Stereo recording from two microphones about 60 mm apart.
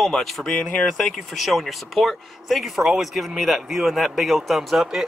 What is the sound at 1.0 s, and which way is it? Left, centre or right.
Speech, centre.